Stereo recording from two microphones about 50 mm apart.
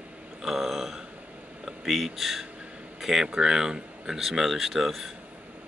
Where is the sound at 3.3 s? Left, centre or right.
Centre.